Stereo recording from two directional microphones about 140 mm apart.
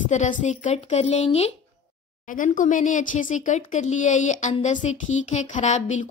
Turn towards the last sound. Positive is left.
turn(degrees=55)  # may be behind; listen again after turning